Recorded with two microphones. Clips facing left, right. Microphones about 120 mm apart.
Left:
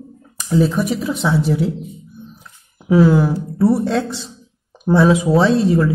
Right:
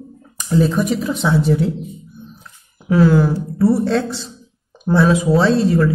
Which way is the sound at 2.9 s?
15° left (ahead or behind).